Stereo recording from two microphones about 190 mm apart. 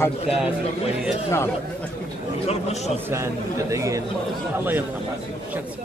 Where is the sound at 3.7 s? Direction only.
15° right (ahead or behind).